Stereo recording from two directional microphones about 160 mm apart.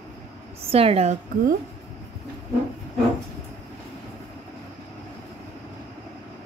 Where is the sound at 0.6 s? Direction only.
35° right (ahead or behind).